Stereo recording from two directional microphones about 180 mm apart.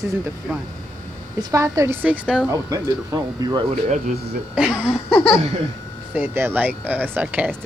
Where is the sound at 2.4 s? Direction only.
20° right (ahead or behind).